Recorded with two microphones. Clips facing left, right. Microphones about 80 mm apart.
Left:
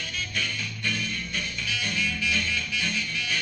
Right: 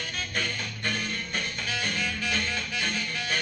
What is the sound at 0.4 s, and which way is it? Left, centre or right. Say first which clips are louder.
Music: right 1 dB; right.